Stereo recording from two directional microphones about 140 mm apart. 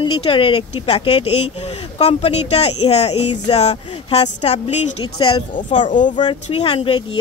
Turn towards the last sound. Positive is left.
turn(degrees=35)  # may be behind; listen again after turning